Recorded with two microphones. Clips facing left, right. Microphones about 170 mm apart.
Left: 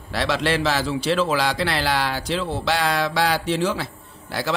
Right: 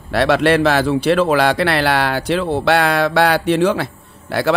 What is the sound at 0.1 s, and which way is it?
A man's voice, 60° right (ahead or behind).